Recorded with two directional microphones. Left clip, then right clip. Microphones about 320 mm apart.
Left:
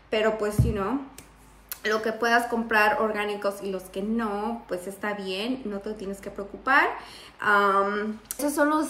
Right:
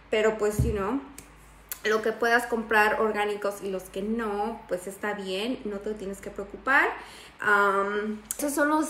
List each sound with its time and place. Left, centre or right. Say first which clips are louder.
0.1 s speech: even; centre